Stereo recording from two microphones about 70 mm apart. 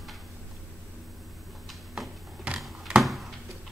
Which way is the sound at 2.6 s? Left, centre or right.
Centre.